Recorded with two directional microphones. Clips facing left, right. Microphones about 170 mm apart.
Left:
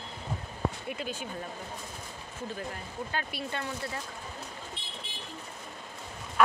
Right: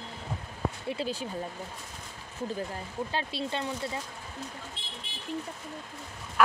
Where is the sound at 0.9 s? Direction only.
35° right (ahead or behind).